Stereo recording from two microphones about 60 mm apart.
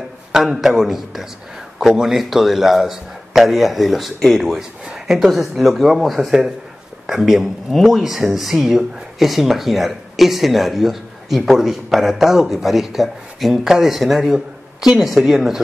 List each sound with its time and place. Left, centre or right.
0.3 s speech: centre